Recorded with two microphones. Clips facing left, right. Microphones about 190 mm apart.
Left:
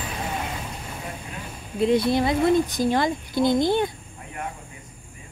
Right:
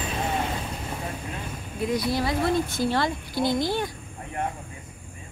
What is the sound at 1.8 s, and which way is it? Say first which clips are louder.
Speech: left 6 dB; 25° left (ahead or behind).